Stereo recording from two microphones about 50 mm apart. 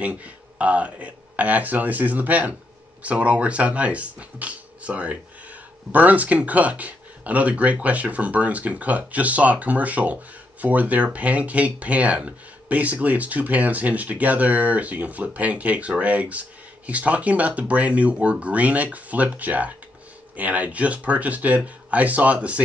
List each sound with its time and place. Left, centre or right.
0.0 s speech: right